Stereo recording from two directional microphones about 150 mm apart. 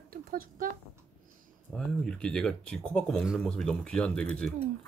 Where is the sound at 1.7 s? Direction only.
5° left (ahead or behind).